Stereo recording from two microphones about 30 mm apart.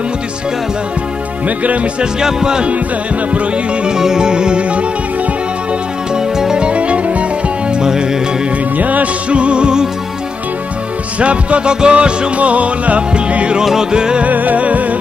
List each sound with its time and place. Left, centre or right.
1.6 s music: right
2.1 s music: right
3.8 s music: right
6.1 s music: right
6.6 s music: right
7.8 s music: right
8.7 s music: right
9.3 s music: right
11.1 s music: right
12.4 s music: right
13.7 s music: right
14.2 s music: right
14.6 s music: right